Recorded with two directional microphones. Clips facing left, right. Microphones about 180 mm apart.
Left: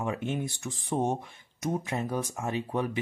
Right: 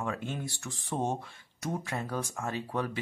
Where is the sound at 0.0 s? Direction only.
20° left (ahead or behind).